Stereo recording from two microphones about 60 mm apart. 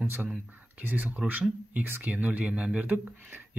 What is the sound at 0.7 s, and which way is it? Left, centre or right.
Speech, right.